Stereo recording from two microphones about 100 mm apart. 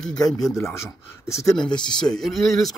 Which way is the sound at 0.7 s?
30° left (ahead or behind).